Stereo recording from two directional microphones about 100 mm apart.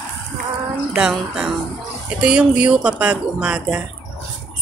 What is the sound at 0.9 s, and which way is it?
Speech, 5° right (ahead or behind).